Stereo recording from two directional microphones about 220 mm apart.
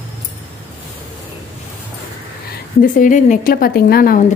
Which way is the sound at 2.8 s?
35° left (ahead or behind).